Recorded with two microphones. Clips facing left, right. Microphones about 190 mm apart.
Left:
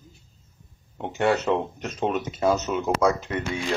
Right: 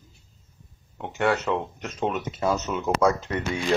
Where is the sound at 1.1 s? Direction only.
25° left (ahead or behind).